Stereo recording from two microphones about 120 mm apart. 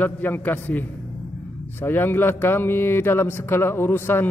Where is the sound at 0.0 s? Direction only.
15° left (ahead or behind).